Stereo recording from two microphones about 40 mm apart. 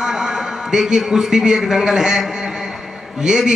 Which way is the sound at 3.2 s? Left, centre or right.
Centre.